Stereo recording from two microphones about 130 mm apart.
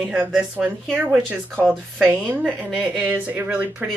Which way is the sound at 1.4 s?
10° left (ahead or behind).